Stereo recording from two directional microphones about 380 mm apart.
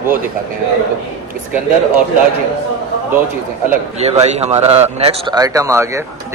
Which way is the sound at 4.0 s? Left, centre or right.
Centre.